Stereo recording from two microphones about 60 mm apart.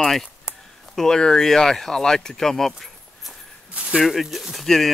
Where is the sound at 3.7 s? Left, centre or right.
Centre.